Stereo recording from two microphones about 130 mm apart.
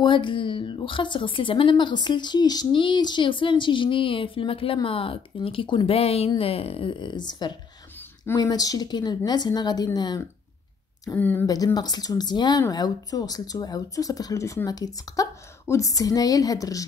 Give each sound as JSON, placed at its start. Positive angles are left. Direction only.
{"t": 0.0, "sound": "a woman's voice", "side_deg": 40}
{"t": 11.1, "sound": "speech", "side_deg": 15}
{"t": 11.4, "sound": "speech", "side_deg": 30}